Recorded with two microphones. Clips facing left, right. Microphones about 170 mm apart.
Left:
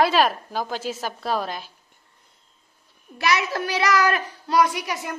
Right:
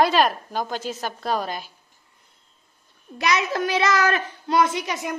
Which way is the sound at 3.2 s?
20° right (ahead or behind).